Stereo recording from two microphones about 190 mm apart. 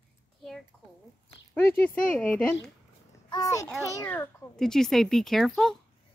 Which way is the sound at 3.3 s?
15° left (ahead or behind).